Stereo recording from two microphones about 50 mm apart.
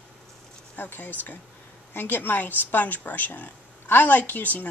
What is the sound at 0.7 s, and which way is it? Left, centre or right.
A woman's voice, left.